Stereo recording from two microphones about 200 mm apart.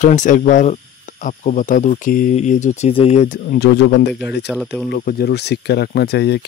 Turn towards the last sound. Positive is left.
turn(degrees=55)  # may be behind; listen again after turning